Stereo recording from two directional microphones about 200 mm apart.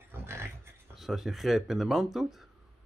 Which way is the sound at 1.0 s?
Centre (ahead or behind).